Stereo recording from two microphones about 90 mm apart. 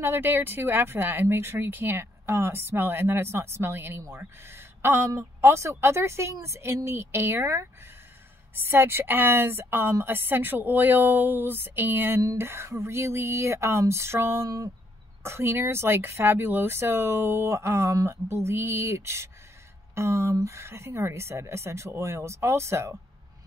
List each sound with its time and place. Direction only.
0.0 s speech: 25° right (ahead or behind)
12.2 s speech: 40° right (ahead or behind)